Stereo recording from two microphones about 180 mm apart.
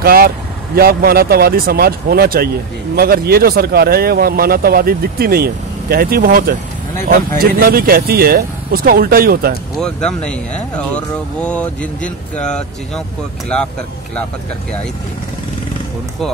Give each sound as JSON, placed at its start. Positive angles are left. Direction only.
{"t": 0.0, "sound": "speech", "side_deg": -55}
{"t": 9.8, "sound": "speech", "side_deg": 5}